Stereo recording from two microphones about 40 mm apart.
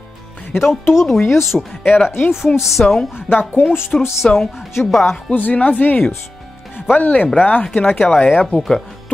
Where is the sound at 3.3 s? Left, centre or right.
Left.